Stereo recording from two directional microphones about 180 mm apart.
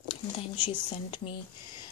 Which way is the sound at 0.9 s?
25° left (ahead or behind).